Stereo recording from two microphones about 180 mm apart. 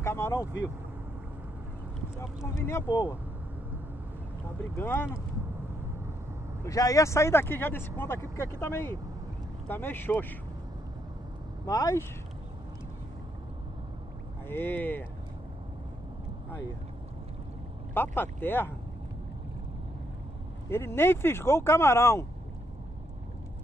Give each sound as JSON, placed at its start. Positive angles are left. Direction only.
{"t": 0.0, "sound": "vehicle", "side_deg": 15}
{"t": 2.6, "sound": "speech", "side_deg": 15}
{"t": 4.7, "sound": "speech", "side_deg": 10}
{"t": 6.6, "sound": "speech", "side_deg": 20}
{"t": 11.6, "sound": "speech", "side_deg": 20}
{"t": 14.5, "sound": "speech", "side_deg": 10}
{"t": 17.9, "sound": "speech", "side_deg": 10}
{"t": 20.7, "sound": "speech", "side_deg": 15}